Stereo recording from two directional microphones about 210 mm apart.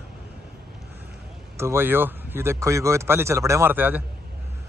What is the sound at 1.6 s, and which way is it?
Speech, 10° right (ahead or behind).